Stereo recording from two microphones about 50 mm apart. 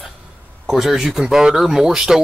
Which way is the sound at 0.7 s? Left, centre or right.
Centre.